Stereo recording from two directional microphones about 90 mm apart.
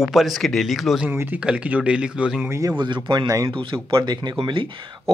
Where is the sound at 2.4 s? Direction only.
30° right (ahead or behind).